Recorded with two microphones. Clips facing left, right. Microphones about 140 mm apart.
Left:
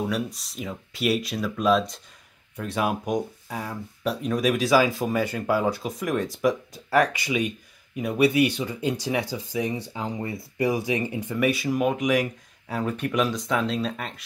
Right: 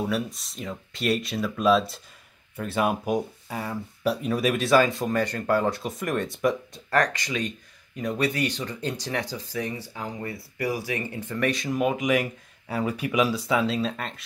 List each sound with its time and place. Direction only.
0.1 s speech: centre (ahead or behind)